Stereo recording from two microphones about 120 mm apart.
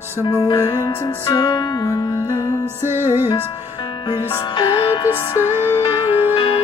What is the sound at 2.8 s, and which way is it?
Music, 20° right (ahead or behind).